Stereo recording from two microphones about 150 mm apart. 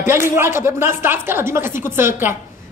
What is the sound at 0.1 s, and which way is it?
A man's voice, 15° right (ahead or behind).